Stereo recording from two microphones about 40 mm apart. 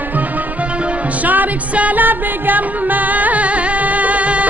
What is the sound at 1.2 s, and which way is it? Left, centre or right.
Music, right.